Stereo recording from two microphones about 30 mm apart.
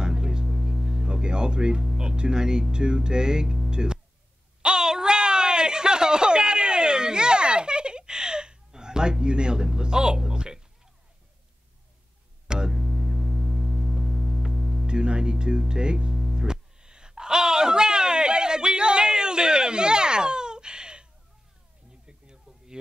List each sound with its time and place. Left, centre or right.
0.0 s music: right
0.5 s music: centre
3.7 s speech: right
4.6 s a sound: right
9.8 s music: right
12.4 s music: right
12.7 s music: centre
14.9 s music: right
16.2 s music: centre
22.0 s a sound: right